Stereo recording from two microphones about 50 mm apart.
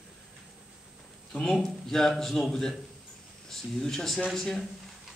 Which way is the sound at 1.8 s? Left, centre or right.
Centre.